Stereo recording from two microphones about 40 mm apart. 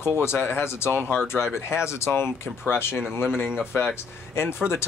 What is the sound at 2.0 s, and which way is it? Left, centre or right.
Speech, left.